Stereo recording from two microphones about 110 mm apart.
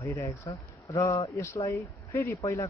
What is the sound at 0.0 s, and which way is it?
Speech, 30° left (ahead or behind).